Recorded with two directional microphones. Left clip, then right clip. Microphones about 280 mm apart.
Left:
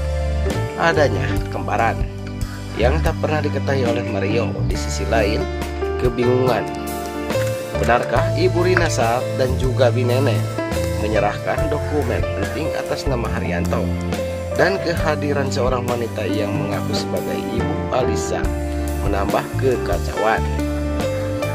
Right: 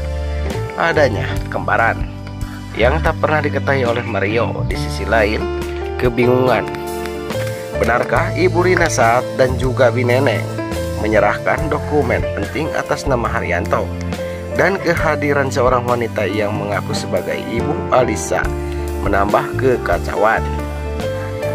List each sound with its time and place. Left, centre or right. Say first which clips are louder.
0.7 s speech: right 3 dB; centre
7.9 s speech: even; centre
17.9 s speech: right 6 dB; centre